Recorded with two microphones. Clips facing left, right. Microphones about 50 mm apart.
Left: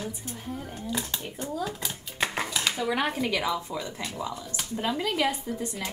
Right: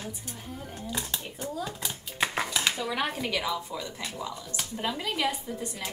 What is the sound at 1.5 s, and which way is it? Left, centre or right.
Speech, centre.